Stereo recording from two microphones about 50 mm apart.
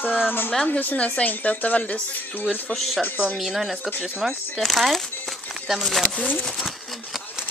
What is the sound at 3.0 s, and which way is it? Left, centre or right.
Speech, left.